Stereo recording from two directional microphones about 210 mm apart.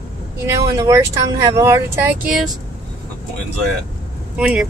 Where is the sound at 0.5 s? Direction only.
15° right (ahead or behind).